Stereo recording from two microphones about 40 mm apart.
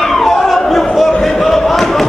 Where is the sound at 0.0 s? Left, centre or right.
Centre.